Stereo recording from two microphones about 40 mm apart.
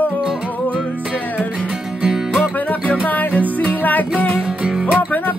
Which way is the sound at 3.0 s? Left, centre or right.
Left.